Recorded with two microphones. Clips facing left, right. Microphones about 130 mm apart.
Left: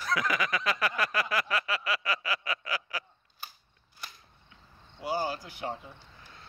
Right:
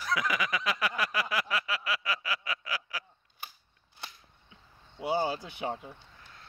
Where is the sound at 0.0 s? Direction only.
10° right (ahead or behind).